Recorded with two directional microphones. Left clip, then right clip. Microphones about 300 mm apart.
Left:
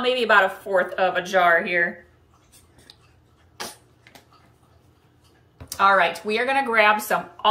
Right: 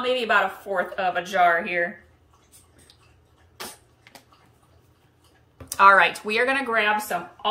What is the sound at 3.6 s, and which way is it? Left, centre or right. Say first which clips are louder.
Typewriter: left 3 dB; centre.